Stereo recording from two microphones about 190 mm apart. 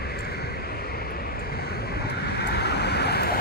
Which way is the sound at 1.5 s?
55° left (ahead or behind).